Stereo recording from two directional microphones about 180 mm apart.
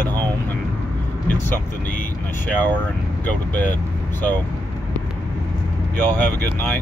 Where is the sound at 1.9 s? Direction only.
10° left (ahead or behind).